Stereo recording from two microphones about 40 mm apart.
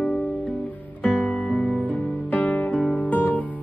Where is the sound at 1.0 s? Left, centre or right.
Left.